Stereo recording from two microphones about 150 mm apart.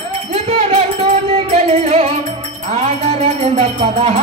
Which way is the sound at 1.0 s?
40° right (ahead or behind).